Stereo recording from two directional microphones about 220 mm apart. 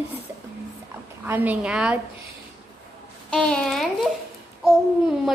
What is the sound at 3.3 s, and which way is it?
A child's voice, 5° left (ahead or behind).